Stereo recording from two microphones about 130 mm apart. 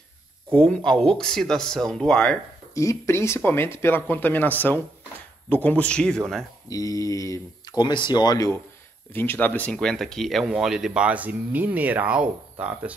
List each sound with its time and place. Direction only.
0.5 s speech: 5° left (ahead or behind)
2.7 s speech: 25° left (ahead or behind); by 6.4 s 5° left (ahead or behind)
6.7 s speech: 30° left (ahead or behind)
9.1 s speech: 15° left (ahead or behind); by 12.9 s 10° right (ahead or behind)